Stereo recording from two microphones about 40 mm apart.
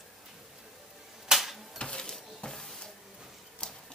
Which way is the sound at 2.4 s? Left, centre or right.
Centre.